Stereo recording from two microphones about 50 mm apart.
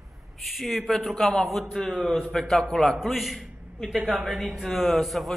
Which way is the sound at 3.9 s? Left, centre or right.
Right.